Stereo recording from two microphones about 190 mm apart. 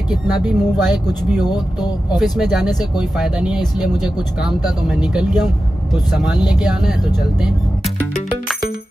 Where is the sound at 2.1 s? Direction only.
Centre (ahead or behind).